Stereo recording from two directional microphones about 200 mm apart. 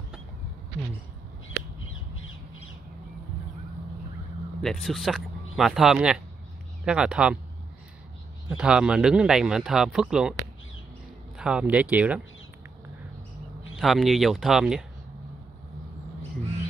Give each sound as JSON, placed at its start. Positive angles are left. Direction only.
{"t": 1.9, "sound": "crow", "side_deg": 80}
{"t": 4.6, "sound": "speech", "side_deg": 0}
{"t": 8.5, "sound": "speech", "side_deg": -5}
{"t": 11.3, "sound": "speech", "side_deg": -5}
{"t": 13.7, "sound": "speech", "side_deg": 0}